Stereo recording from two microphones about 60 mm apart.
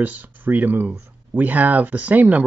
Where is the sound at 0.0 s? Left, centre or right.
Right.